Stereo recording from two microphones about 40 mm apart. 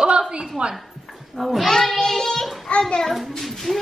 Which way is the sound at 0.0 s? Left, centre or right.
Right.